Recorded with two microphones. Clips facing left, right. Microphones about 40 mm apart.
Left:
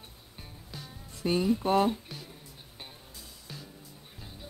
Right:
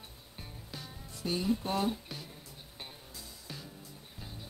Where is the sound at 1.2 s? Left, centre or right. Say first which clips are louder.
Left 6 dB; left.